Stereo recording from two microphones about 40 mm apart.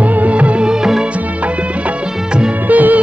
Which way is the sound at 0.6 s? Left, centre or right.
Centre.